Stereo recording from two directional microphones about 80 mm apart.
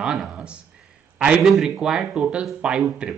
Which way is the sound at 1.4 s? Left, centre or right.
Centre.